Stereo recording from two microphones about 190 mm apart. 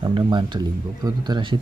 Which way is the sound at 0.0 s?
25° right (ahead or behind).